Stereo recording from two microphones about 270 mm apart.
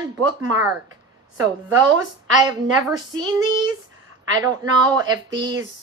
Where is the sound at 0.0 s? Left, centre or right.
Centre.